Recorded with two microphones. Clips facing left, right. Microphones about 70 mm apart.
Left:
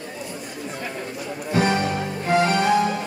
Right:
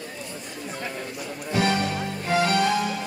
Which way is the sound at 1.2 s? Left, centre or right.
Centre.